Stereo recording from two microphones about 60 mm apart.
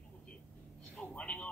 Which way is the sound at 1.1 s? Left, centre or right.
Centre.